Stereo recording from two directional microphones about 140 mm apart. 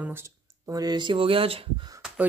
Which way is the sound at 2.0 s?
5° right (ahead or behind).